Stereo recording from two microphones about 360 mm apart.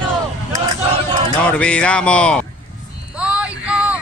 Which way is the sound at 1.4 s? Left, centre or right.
Centre.